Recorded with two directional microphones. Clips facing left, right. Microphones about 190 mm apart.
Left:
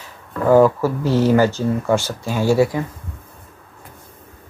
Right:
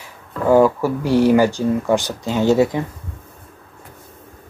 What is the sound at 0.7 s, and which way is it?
Speech, 15° right (ahead or behind).